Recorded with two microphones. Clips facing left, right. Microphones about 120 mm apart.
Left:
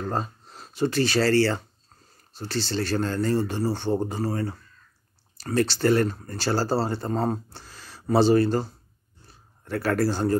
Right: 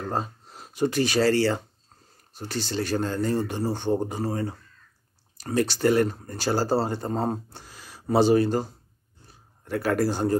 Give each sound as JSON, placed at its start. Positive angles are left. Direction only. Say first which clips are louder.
{"t": 0.0, "sound": "a man's voice", "louder": "even", "side_deg": -10}